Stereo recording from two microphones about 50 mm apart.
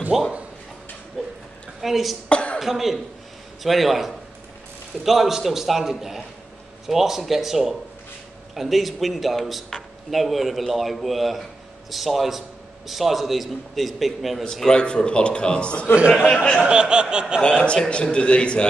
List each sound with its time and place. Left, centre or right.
0.1 s speech: centre
1.2 s a sound: centre
1.8 s a man's voice: centre
2.2 s a man's voice: left
2.6 s a man's voice: centre
14.4 s a man's voice: centre
16.6 s a sound: centre
17.8 s a man's voice: left